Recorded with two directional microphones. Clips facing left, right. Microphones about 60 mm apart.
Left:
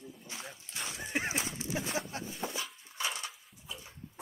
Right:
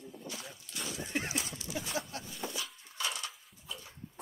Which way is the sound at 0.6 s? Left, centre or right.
Left.